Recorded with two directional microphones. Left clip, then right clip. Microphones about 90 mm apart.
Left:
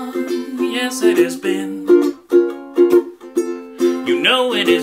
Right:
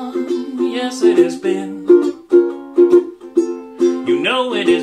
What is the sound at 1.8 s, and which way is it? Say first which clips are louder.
Music: right 2 dB; centre (ahead or behind).